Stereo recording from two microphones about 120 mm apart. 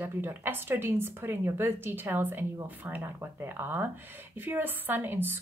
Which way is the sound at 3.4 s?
15° right (ahead or behind).